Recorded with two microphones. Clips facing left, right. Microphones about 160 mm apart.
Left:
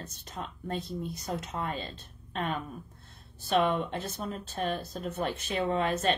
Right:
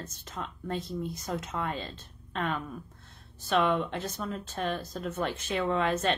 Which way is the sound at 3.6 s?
40° left (ahead or behind).